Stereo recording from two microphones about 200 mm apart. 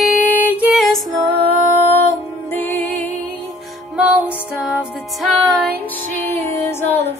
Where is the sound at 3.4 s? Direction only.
Centre (ahead or behind).